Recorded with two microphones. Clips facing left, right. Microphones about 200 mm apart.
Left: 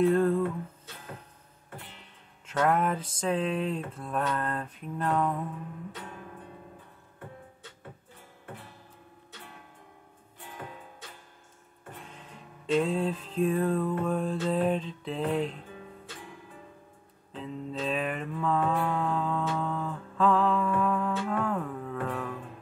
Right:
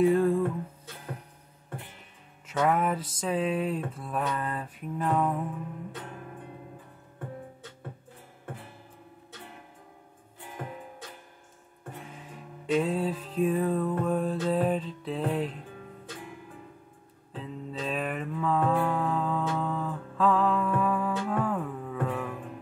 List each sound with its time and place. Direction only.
0.0 s music: 10° right (ahead or behind)
2.4 s mantra: centre (ahead or behind)
12.7 s mantra: 5° right (ahead or behind)
17.4 s music: centre (ahead or behind)